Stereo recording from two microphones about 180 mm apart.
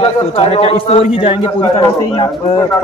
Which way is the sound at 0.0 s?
35° left (ahead or behind).